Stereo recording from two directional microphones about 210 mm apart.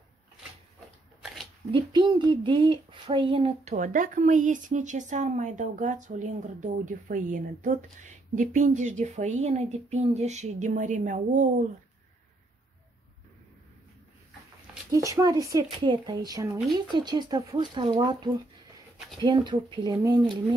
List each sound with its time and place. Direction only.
1.2 s shuffling cards: centre (ahead or behind)
1.7 s speech: 20° right (ahead or behind); by 11.5 s 35° right (ahead or behind)
14.9 s speech: 15° right (ahead or behind)